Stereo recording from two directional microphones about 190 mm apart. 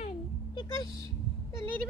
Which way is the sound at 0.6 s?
20° left (ahead or behind).